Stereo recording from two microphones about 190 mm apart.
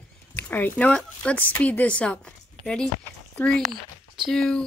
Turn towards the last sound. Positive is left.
turn(degrees=5)  # may be behind; listen again after turning